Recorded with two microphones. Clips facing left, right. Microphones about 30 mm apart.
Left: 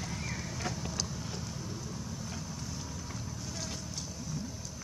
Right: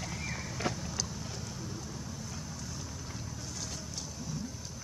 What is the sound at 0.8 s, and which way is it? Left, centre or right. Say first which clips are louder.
Vehicle: left 1 dB; centre.